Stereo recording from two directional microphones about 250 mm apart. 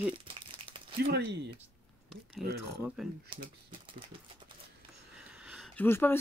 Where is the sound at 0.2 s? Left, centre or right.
Right.